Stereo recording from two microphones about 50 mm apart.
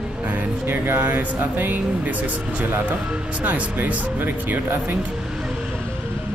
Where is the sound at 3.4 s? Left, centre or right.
Right.